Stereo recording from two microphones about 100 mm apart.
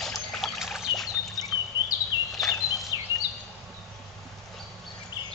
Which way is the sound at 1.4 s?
40° left (ahead or behind).